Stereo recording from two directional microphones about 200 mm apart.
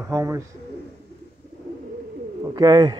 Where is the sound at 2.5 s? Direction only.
20° right (ahead or behind).